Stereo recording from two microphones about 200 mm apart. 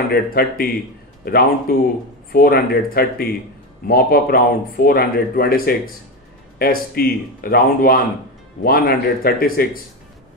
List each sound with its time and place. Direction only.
0.1 s speech: 50° left (ahead or behind)